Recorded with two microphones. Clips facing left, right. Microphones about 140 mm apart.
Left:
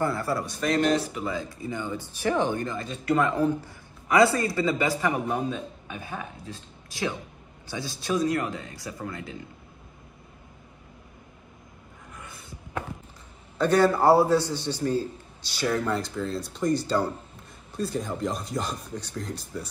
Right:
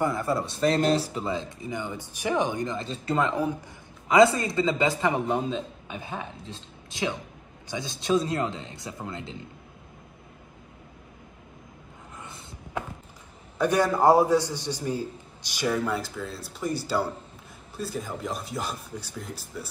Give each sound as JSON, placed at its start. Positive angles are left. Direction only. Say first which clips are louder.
{"t": 0.0, "sound": "speech", "louder": "right 1 dB", "side_deg": -20}
{"t": 13.6, "sound": "a man's voice", "louder": "left 2 dB", "side_deg": -15}